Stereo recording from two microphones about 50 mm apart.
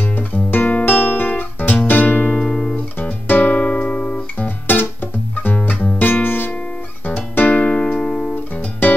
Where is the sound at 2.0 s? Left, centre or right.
Left.